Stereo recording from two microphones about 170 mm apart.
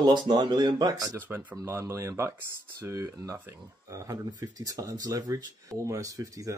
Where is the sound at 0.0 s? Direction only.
25° right (ahead or behind).